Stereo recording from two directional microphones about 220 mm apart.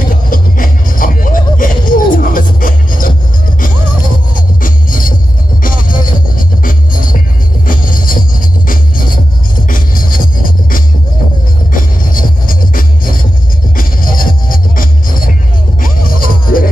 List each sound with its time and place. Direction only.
0.3 s music: 40° left (ahead or behind)
4.6 s music: 40° left (ahead or behind)